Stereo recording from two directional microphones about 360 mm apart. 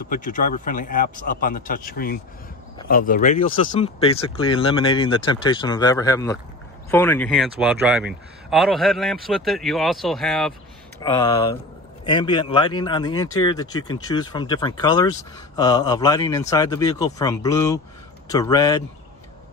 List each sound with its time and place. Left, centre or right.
0.1 s a man's voice: left; by 10.5 s centre
11.0 s speech: centre